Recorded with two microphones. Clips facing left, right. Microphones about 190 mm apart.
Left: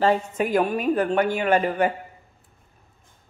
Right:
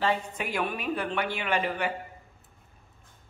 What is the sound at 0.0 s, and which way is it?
A man's voice, 45° left (ahead or behind).